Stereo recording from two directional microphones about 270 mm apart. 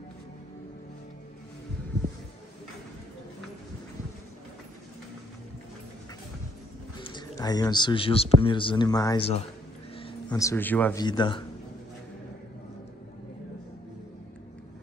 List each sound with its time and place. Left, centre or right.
7.0 s a man's voice: centre